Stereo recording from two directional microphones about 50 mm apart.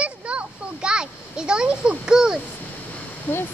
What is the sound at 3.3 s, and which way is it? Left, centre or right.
Speech, left.